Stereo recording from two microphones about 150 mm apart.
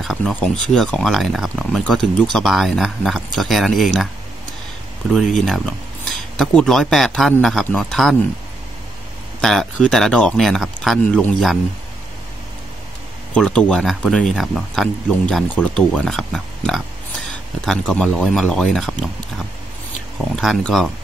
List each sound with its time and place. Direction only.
0.0 s speech: 5° left (ahead or behind)
5.1 s speech: centre (ahead or behind)
9.4 s speech: 5° left (ahead or behind)
13.3 s speech: 5° left (ahead or behind)